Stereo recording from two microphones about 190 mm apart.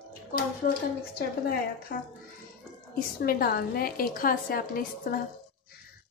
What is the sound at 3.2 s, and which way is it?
A woman's voice, 50° left (ahead or behind).